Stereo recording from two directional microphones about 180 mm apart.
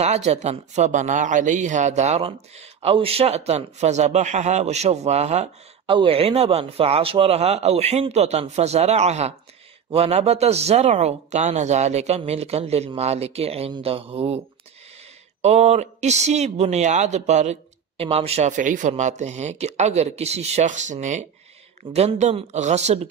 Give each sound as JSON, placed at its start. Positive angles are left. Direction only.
{"t": 0.0, "sound": "speech", "side_deg": -35}
{"t": 15.4, "sound": "speech", "side_deg": -35}